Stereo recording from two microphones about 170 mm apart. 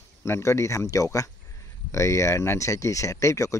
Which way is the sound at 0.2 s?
15° left (ahead or behind).